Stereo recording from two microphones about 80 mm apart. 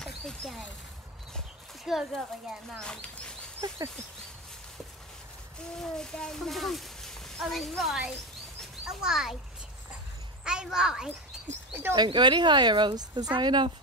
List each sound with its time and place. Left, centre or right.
0.0 s speech: centre
1.9 s speech: centre
2.7 s speech: centre
5.8 s a child's voice: centre
10.4 s a child's voice: centre
11.3 s a sound: centre
11.9 s speech: right